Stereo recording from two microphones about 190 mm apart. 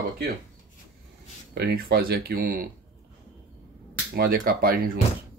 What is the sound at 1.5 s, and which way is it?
Speech, 55° right (ahead or behind).